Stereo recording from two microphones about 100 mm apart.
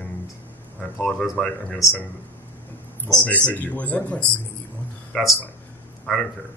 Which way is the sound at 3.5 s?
15° left (ahead or behind).